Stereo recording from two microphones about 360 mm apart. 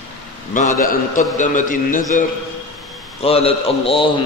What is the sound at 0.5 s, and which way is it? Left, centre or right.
A man's voice, left.